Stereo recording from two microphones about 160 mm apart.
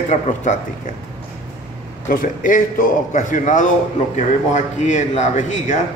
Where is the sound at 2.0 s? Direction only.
55° left (ahead or behind).